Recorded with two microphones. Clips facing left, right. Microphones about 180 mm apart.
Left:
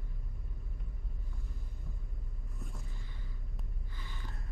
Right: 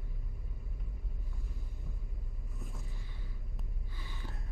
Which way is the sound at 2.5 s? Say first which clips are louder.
Even; centre (ahead or behind).